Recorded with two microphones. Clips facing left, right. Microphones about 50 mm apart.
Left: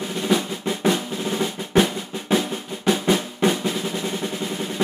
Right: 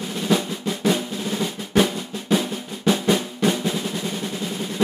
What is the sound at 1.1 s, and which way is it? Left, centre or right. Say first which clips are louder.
Drum: left 1 dB; centre.